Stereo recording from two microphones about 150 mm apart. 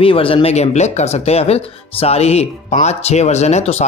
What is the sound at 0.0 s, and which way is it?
Speech, 35° left (ahead or behind).